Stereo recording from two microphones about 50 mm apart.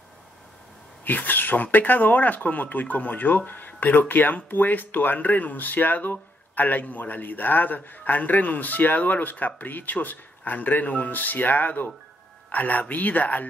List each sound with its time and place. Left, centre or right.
1.0 s speech: left